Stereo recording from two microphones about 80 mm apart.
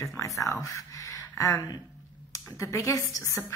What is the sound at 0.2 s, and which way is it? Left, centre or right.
Speech, left.